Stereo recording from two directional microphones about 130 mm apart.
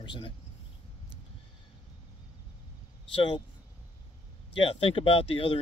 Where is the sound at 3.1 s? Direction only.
40° left (ahead or behind).